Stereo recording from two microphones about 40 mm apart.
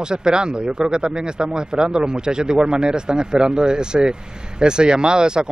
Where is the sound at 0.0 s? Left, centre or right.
Right.